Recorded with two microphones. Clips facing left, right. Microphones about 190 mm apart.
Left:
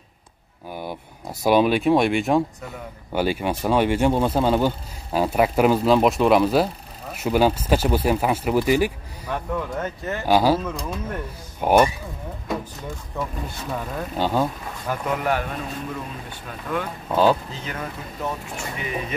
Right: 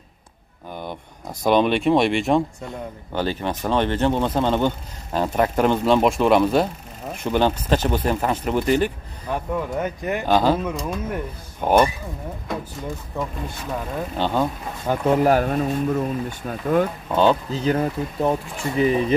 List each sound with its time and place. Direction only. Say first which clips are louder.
0.7 s speech: even; 5° left (ahead or behind)
9.3 s speech: right 2 dB; 10° right (ahead or behind)
10.2 s speech: left 1 dB; 10° left (ahead or behind)
10.6 s speech: right 3 dB; 5° right (ahead or behind)
11.6 s speech: even; 10° left (ahead or behind)
13.1 s speech: left 1 dB; 15° right (ahead or behind)
14.1 s speech: even; 10° left (ahead or behind)
14.9 s speech: right 7 dB; 35° right (ahead or behind)
17.1 s speech: even; 5° left (ahead or behind)
17.5 s speech: right 11 dB; 35° right (ahead or behind)